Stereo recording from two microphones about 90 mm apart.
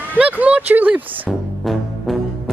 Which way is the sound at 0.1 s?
15° right (ahead or behind).